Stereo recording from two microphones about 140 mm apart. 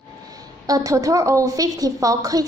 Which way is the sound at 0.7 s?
25° right (ahead or behind).